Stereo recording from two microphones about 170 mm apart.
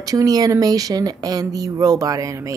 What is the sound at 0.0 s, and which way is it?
Speech, 20° right (ahead or behind).